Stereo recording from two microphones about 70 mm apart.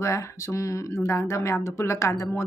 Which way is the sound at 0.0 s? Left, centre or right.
Left.